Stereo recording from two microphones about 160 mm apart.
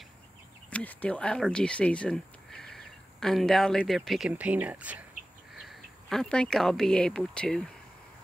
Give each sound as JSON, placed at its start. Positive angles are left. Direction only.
{"t": 0.7, "sound": "speech", "side_deg": 10}